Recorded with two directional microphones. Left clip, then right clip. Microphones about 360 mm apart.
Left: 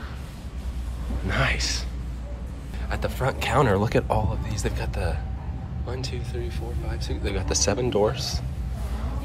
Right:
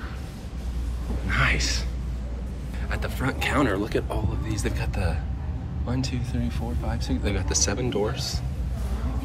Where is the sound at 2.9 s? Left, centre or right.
Centre.